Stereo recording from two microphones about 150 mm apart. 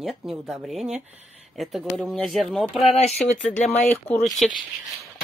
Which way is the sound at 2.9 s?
45° left (ahead or behind).